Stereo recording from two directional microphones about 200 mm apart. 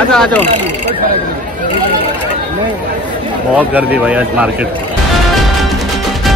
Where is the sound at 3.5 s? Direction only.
10° right (ahead or behind).